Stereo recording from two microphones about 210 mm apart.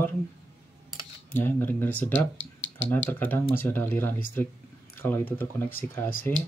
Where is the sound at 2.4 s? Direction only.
60° left (ahead or behind).